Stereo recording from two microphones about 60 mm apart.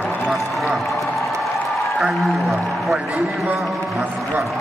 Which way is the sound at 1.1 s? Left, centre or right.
Centre.